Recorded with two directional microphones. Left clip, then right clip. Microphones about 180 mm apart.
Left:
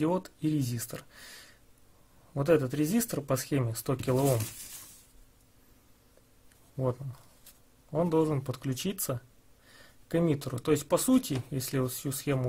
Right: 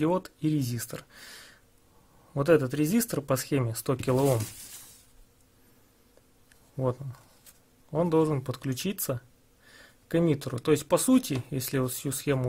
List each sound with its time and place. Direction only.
0.0 s speech: 10° right (ahead or behind)
6.8 s speech: 10° right (ahead or behind)